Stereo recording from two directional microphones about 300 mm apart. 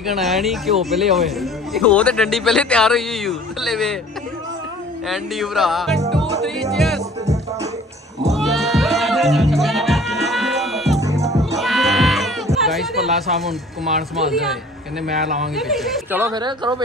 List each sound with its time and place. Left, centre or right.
0.0 s speech: centre
5.0 s speech: centre
6.7 s music: centre
8.3 s music: centre
11.0 s music: centre
11.5 s music: centre
12.4 s a woman's voice: centre